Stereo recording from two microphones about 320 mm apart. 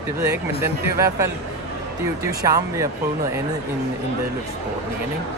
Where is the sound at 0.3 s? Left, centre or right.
Centre.